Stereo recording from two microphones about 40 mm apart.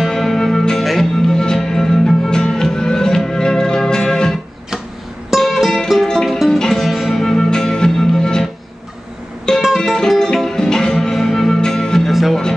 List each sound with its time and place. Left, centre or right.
0.1 s music: centre
1.2 s music: centre
5.5 s music: centre
7.2 s music: centre
9.5 s music: centre
12.1 s music: centre